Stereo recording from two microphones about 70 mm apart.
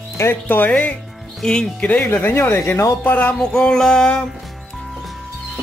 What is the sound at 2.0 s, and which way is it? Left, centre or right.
Speech, left.